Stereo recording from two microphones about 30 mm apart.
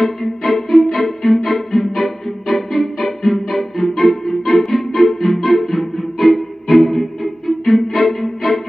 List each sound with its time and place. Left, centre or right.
0.0 s music: centre